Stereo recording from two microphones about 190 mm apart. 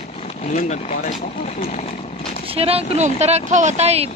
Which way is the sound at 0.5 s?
40° left (ahead or behind).